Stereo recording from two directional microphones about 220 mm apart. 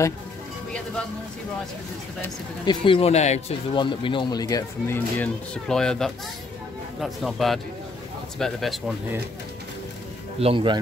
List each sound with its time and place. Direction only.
2.2 s speech: 20° left (ahead or behind); by 8.8 s centre (ahead or behind)
10.4 s a man's voice: 25° right (ahead or behind)